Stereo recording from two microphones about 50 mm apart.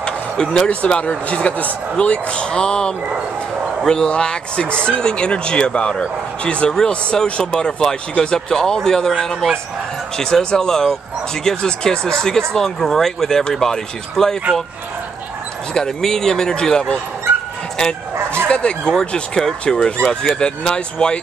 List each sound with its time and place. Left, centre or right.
0.0 s a sound: centre
0.7 s speech: centre
15.7 s speech: centre
18.1 s bow-wow: right
18.5 s a sound: left
18.9 s speech: centre